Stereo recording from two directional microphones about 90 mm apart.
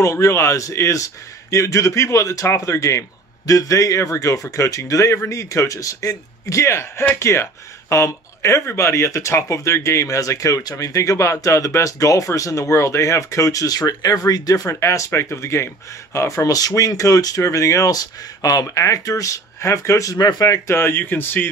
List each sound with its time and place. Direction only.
0.0 s speech: 35° left (ahead or behind)